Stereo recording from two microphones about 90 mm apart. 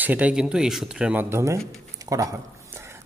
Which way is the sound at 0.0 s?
15° right (ahead or behind).